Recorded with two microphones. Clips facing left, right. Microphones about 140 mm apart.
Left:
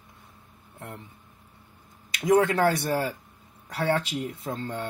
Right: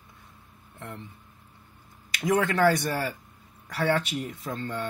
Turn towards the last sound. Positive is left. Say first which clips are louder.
# even
turn(degrees=30)  # may be behind; listen again after turning